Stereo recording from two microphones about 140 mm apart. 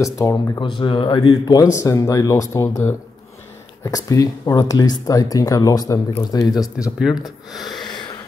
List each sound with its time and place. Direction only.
0.0 s speech: 25° left (ahead or behind)
0.6 s speech: 35° left (ahead or behind)
7.6 s a sound: 30° left (ahead or behind)